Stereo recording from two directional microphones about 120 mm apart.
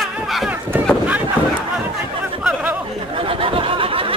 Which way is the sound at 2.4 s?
5° right (ahead or behind).